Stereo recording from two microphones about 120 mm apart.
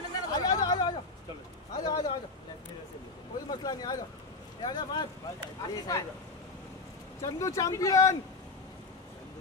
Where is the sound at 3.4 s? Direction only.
35° left (ahead or behind).